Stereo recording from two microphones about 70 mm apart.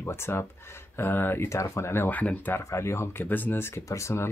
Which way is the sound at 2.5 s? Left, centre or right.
Left.